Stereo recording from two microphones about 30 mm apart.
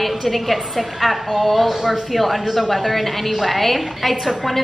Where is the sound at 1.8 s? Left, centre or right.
Right.